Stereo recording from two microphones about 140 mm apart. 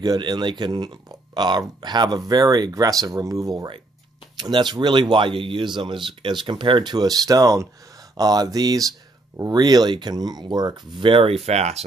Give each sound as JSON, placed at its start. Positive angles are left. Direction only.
{"t": 0.0, "sound": "speech", "side_deg": -30}